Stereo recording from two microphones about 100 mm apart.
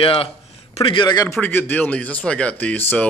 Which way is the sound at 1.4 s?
15° left (ahead or behind).